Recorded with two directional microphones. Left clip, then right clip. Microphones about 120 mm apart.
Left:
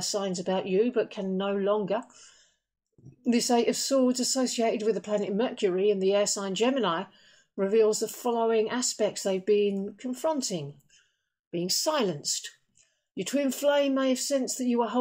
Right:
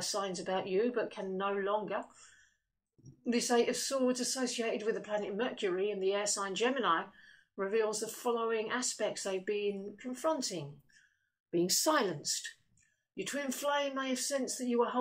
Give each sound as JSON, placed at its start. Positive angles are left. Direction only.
{"t": 0.0, "sound": "speech", "side_deg": 30}
{"t": 3.3, "sound": "speech", "side_deg": 35}
{"t": 11.5, "sound": "speech", "side_deg": 10}
{"t": 12.2, "sound": "speech", "side_deg": 35}